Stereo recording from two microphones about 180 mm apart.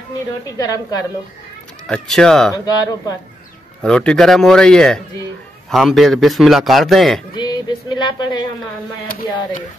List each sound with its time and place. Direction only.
0.5 s speech: 20° left (ahead or behind)
1.9 s a man's voice: 5° left (ahead or behind)
2.5 s speech: 20° left (ahead or behind)
3.8 s a man's voice: 5° left (ahead or behind)
7.3 s music: 25° left (ahead or behind)
9.0 s speech: 55° left (ahead or behind)